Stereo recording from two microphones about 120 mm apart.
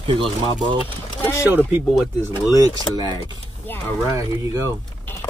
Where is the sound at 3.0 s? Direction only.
35° right (ahead or behind).